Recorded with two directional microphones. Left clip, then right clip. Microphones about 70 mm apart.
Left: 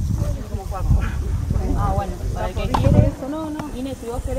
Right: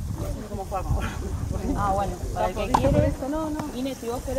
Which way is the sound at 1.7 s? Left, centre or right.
Right.